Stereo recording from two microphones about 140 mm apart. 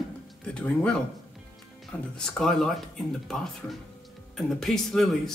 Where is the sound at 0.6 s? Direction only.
5° left (ahead or behind).